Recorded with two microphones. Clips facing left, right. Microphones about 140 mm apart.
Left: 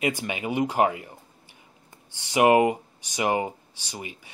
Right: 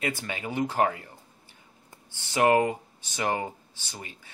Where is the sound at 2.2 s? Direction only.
15° left (ahead or behind).